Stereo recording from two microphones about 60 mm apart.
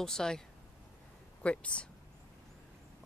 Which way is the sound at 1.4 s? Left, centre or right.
Centre.